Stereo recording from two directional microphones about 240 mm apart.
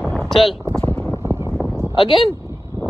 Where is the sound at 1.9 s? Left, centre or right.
Left.